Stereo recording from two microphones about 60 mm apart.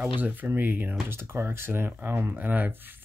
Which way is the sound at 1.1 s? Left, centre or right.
Right.